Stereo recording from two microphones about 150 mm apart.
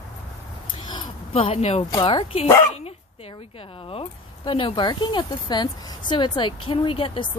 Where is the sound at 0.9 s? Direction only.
35° left (ahead or behind).